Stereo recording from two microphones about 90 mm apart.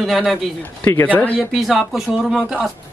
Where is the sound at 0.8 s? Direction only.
20° left (ahead or behind).